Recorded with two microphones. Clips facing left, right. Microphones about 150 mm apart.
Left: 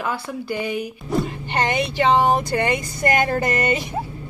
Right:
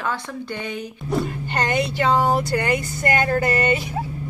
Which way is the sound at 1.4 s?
20° left (ahead or behind).